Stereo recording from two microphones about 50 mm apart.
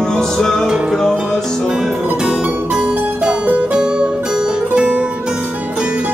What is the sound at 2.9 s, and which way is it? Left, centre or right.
Music, right.